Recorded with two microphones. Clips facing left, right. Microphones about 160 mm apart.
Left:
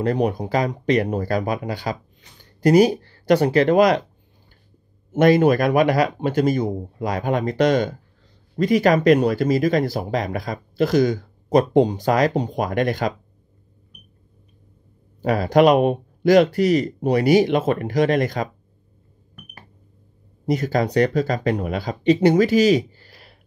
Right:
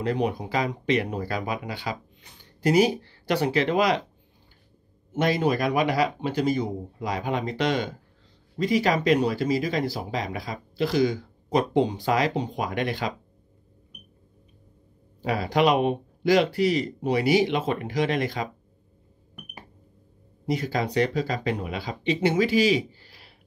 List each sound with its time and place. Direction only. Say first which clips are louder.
0.0 s speech: left 5 dB; 45° left (ahead or behind)
5.1 s speech: left 8 dB; 55° left (ahead or behind)
15.2 s speech: left 7 dB; 45° left (ahead or behind)
20.4 s speech: left 6 dB; 45° left (ahead or behind)